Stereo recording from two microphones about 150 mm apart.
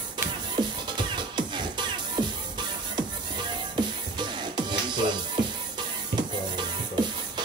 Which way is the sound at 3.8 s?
30° right (ahead or behind).